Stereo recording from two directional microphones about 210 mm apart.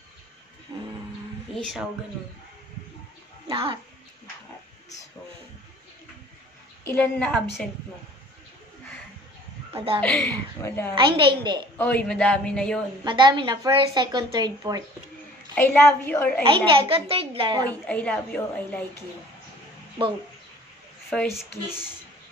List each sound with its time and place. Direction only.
1.5 s a man's voice: centre (ahead or behind)
3.4 s bathtub: 25° right (ahead or behind)
6.8 s a man's voice: 10° left (ahead or behind)
9.8 s a woman's voice: 25° right (ahead or behind)
10.0 s a woman's voice: 5° left (ahead or behind)
11.0 s a woman's voice: 20° right (ahead or behind)
11.7 s a man's voice: 5° left (ahead or behind)
13.0 s a woman's voice: 20° right (ahead or behind)
15.5 s a woman's voice: 10° left (ahead or behind)
16.4 s a woman's voice: 25° right (ahead or behind)
17.8 s a woman's voice: 5° left (ahead or behind)
21.1 s a man's voice: 5° left (ahead or behind)